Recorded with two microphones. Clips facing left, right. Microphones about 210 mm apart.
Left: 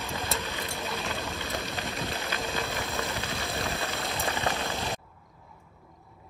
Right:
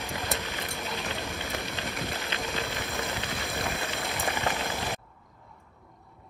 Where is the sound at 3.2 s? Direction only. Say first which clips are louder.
Left 1 dB; 30° left (ahead or behind).